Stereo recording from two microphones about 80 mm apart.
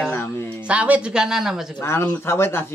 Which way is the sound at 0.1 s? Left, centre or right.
Left.